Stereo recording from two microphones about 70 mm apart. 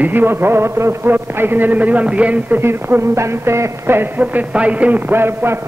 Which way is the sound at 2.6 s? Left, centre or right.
Right.